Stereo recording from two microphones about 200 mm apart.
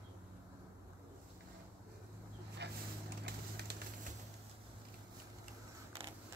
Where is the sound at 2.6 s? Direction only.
60° right (ahead or behind).